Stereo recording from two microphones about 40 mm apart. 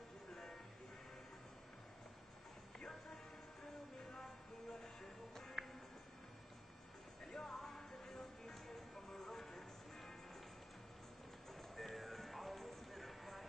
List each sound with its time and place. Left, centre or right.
3.7 s a sound: left
4.6 s music: left
5.3 s music: centre
7.2 s music: left
11.7 s music: centre